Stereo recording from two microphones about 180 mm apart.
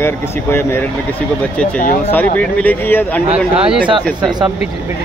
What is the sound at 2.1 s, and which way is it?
Speech, 10° left (ahead or behind).